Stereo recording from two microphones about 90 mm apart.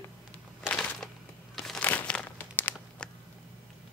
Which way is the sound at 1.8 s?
20° left (ahead or behind).